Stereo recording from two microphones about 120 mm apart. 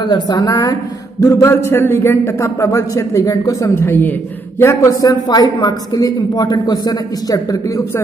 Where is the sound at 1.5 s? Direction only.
20° left (ahead or behind).